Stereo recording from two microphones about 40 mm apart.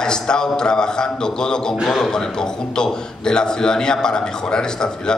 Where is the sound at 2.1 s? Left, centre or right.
Centre.